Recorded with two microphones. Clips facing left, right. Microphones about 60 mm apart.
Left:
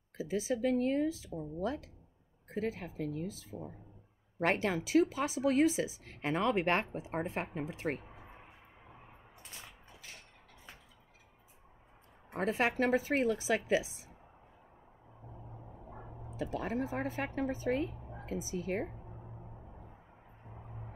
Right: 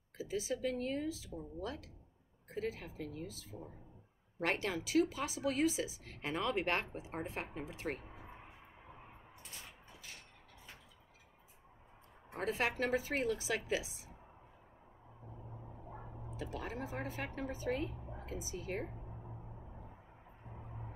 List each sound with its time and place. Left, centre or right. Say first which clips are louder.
0.2 s speech: left 5 dB; left
12.4 s speech: left 5 dB; left
16.3 s speech: left 7 dB; left